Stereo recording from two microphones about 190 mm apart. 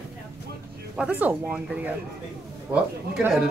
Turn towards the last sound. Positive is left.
turn(degrees=-5)  # may be behind; listen again after turning